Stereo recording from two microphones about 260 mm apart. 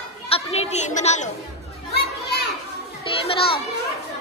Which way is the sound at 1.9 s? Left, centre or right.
Left.